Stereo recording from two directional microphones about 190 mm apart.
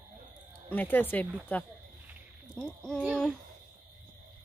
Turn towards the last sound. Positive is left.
turn(degrees=0)  # may be behind; listen again after turning